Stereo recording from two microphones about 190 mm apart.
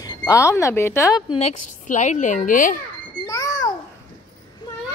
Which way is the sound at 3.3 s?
20° left (ahead or behind).